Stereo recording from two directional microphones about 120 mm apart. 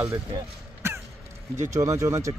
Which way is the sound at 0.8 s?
20° right (ahead or behind).